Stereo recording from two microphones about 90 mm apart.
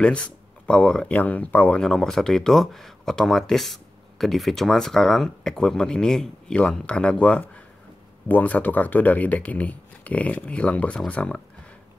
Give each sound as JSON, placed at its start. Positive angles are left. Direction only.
{"t": 0.0, "sound": "speech", "side_deg": 10}
{"t": 1.8, "sound": "speech", "side_deg": 5}